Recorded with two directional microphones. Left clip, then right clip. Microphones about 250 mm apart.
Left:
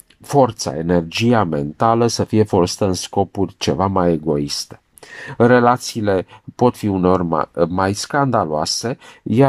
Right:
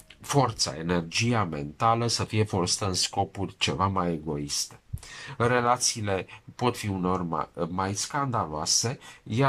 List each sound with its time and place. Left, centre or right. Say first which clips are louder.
0.3 s speech: left 10 dB; left